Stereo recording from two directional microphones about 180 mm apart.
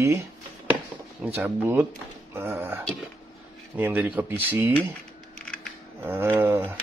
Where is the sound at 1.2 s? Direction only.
10° right (ahead or behind).